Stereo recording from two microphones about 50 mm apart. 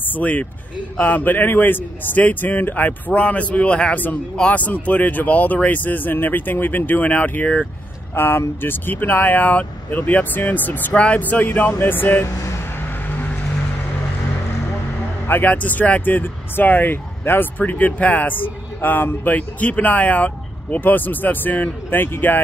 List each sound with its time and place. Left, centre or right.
0.1 s a man's voice: left
3.9 s speech: left
8.1 s speech: left
10.9 s a man's voice: left
11.1 s speech: left
15.4 s speech: left